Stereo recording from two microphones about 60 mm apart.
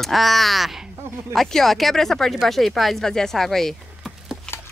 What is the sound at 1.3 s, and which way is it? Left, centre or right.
Speech, centre.